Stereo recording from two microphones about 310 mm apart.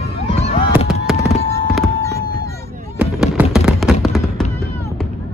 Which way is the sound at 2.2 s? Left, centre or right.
Right.